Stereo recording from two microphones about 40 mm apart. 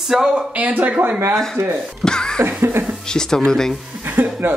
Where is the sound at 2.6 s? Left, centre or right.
Right.